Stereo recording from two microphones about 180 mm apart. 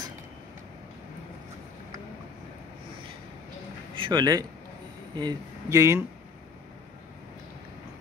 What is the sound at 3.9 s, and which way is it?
Speech, 25° right (ahead or behind).